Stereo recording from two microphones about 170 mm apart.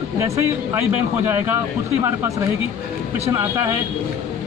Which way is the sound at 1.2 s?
15° right (ahead or behind).